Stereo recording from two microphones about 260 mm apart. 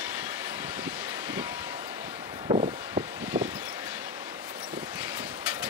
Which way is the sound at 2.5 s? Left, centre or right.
Centre.